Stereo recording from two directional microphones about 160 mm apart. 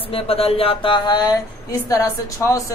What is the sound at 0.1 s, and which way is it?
Speech, 35° left (ahead or behind).